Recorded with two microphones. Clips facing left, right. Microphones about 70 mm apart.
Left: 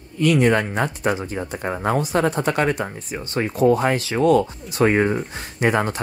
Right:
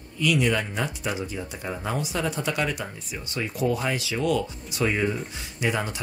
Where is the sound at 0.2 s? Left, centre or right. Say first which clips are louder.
Left 6 dB; left.